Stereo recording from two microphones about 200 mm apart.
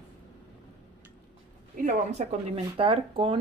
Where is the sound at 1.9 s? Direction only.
30° right (ahead or behind).